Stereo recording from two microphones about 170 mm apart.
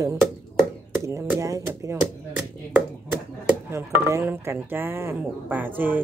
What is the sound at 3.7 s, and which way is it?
Speech, 15° right (ahead or behind).